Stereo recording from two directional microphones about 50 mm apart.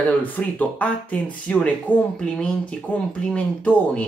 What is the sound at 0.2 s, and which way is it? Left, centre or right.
Speech, left.